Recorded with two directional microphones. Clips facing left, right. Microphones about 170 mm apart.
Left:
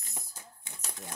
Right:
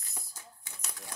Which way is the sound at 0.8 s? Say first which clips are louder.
Left 3 dB; 20° left (ahead or behind).